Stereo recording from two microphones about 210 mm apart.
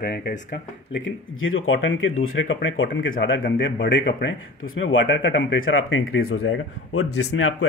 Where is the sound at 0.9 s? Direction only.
70° left (ahead or behind).